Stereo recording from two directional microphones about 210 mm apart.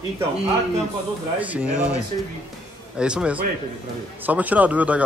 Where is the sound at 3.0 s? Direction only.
5° right (ahead or behind).